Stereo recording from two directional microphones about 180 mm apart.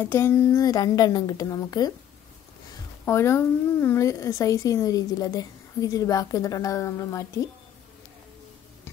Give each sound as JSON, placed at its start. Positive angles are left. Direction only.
{"t": 0.0, "sound": "a woman's voice", "side_deg": 10}
{"t": 3.1, "sound": "a woman's voice", "side_deg": 15}